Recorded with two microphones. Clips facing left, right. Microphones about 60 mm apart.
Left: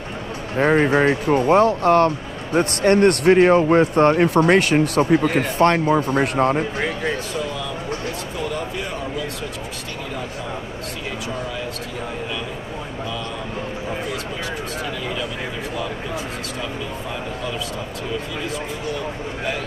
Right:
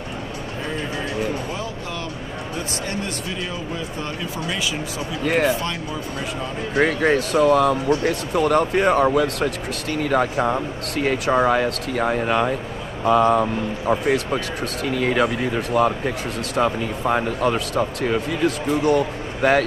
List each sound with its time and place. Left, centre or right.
0.6 s speech: left
6.8 s speech: right